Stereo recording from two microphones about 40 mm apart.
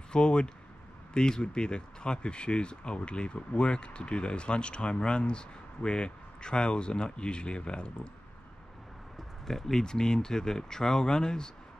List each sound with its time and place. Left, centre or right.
0.1 s speech: left
9.5 s speech: centre